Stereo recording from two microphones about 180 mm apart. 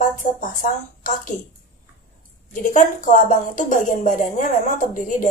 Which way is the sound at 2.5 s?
45° left (ahead or behind).